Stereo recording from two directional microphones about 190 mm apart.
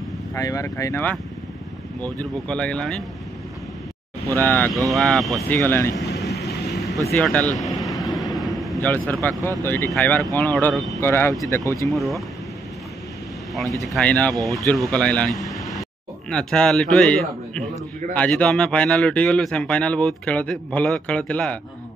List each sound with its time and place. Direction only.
0.3 s speech: 15° left (ahead or behind)
4.4 s speech: 10° left (ahead or behind)
5.6 s speech: 10° left (ahead or behind)
7.2 s vehicle: 5° left (ahead or behind)
9.6 s speech: 10° left (ahead or behind)
11.9 s speech: centre (ahead or behind)
13.6 s speech: centre (ahead or behind)